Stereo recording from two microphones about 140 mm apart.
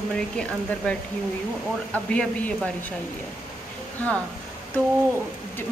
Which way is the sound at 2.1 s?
10° left (ahead or behind).